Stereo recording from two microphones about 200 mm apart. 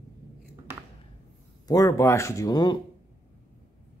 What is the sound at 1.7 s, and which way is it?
Speech, 15° left (ahead or behind).